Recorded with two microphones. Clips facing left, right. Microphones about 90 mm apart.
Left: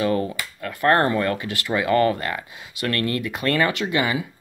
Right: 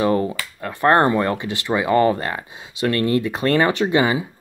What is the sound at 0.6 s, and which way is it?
Speech, 25° right (ahead or behind).